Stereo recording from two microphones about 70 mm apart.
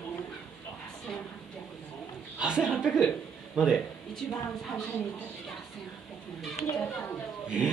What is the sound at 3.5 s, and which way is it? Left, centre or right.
Speech, centre.